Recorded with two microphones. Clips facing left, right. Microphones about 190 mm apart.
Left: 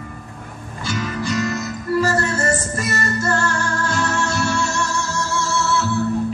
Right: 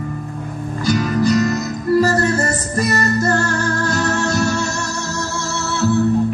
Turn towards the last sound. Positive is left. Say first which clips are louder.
# right 3 dB
turn(degrees=-40)  # may be behind; listen again after turning